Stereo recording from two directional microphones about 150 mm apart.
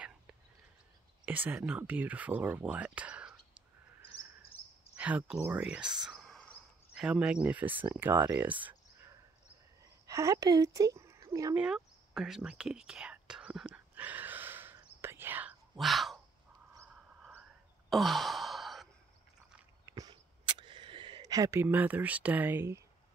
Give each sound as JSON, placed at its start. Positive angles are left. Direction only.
{"t": 1.2, "sound": "speech", "side_deg": -10}
{"t": 4.9, "sound": "speech", "side_deg": -10}
{"t": 10.0, "sound": "speech", "side_deg": -20}
{"t": 11.5, "sound": "whispering", "side_deg": -5}
{"t": 17.8, "sound": "sigh", "side_deg": 0}
{"t": 19.9, "sound": "a sound", "side_deg": -25}